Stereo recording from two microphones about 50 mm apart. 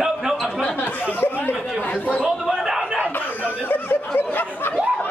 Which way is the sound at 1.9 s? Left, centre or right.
Centre.